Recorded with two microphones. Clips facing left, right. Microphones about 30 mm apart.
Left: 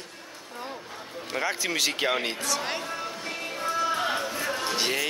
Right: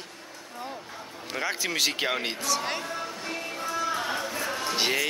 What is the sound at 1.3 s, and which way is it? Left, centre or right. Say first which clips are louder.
Speech: left 1 dB; centre.